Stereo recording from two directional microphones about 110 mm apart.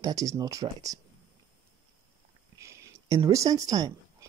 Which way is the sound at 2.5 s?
25° right (ahead or behind).